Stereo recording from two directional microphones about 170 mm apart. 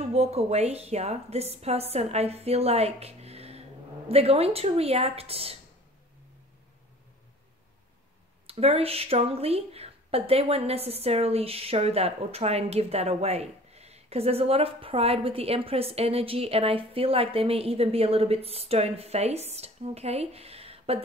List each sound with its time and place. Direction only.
0.1 s speech: 40° right (ahead or behind)
8.5 s speech: 35° right (ahead or behind)